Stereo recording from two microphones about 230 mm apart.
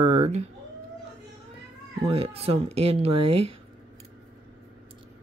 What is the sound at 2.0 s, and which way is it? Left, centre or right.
Speech, right.